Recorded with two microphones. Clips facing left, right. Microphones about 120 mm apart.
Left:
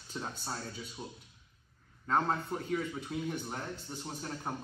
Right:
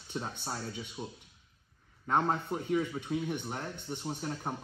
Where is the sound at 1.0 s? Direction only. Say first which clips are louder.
Right 3 dB; 10° right (ahead or behind).